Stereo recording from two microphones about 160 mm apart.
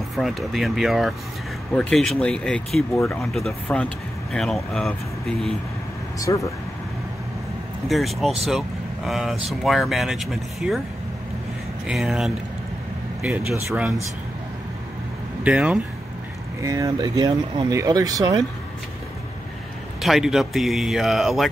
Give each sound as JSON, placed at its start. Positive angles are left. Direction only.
{"t": 0.1, "sound": "speech", "side_deg": 0}
{"t": 6.1, "sound": "speech", "side_deg": 20}
{"t": 7.9, "sound": "speech", "side_deg": 0}
{"t": 11.9, "sound": "speech", "side_deg": -5}
{"t": 15.4, "sound": "speech", "side_deg": -10}
{"t": 16.6, "sound": "speech", "side_deg": -20}
{"t": 20.0, "sound": "speech", "side_deg": 0}